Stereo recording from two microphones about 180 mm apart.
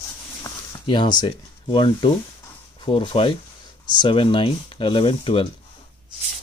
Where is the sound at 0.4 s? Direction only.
25° left (ahead or behind).